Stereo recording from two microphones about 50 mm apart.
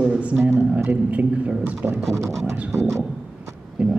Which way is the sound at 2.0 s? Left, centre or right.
Right.